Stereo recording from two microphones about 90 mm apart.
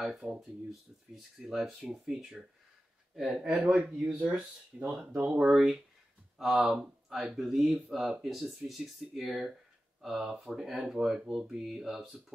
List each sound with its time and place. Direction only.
0.0 s speech: centre (ahead or behind)
3.5 s speech: 15° right (ahead or behind)
5.5 s speech: 5° right (ahead or behind)